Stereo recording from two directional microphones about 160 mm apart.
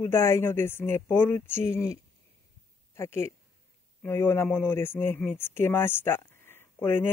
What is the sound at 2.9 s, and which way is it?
Speech, 15° left (ahead or behind).